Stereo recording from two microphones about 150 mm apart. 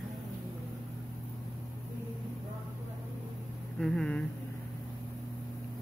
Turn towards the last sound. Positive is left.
turn(degrees=5)  # may be behind; listen again after turning